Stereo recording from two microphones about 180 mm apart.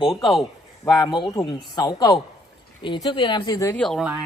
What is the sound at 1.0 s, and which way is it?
A man's voice, 20° left (ahead or behind).